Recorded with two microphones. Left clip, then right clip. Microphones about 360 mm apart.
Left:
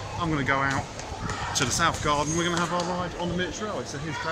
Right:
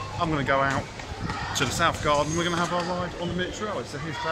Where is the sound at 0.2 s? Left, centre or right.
Centre.